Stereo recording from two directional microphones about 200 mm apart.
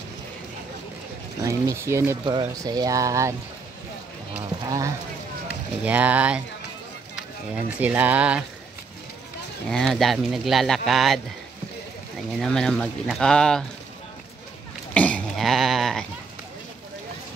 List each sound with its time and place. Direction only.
1.4 s speech: 15° right (ahead or behind)
4.6 s speech: 15° right (ahead or behind)
7.8 s speech: 10° right (ahead or behind)
9.7 s speech: centre (ahead or behind)
12.4 s speech: centre (ahead or behind)
15.0 s sheep: 5° left (ahead or behind)